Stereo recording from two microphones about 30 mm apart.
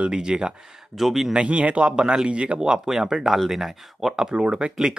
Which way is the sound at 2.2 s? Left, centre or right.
Right.